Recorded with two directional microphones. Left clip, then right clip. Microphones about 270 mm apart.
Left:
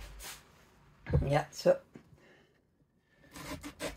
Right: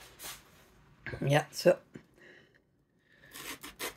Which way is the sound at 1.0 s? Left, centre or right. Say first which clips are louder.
Right 2 dB; right.